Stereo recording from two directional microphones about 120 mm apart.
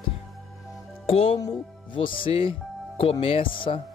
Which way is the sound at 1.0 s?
50° left (ahead or behind).